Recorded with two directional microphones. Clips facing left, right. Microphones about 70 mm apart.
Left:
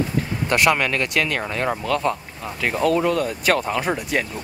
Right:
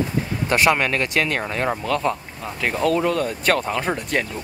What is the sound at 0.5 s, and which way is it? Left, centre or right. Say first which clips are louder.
Speech: right 1 dB; centre.